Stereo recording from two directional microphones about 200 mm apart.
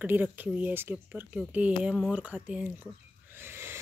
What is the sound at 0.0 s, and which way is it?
Speech, 10° right (ahead or behind).